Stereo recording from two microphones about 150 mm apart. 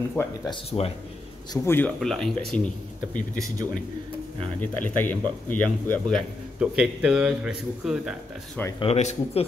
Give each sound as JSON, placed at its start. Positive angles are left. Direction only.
{"t": 0.2, "sound": "speech", "side_deg": 15}
{"t": 0.5, "sound": "speech", "side_deg": 40}
{"t": 1.5, "sound": "speech", "side_deg": 10}
{"t": 4.6, "sound": "speech", "side_deg": 10}
{"t": 8.7, "sound": "speech", "side_deg": 45}